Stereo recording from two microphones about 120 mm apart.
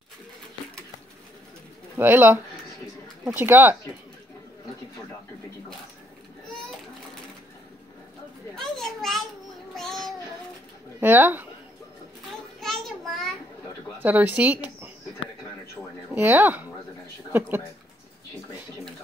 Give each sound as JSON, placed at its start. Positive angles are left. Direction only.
{"t": 2.0, "sound": "speech", "side_deg": -15}
{"t": 8.7, "sound": "children playing", "side_deg": 0}
{"t": 9.8, "sound": "child singing", "side_deg": 0}
{"t": 11.0, "sound": "speech", "side_deg": -15}
{"t": 12.5, "sound": "a sound", "side_deg": 0}
{"t": 14.0, "sound": "speech", "side_deg": -15}
{"t": 16.2, "sound": "speech", "side_deg": -15}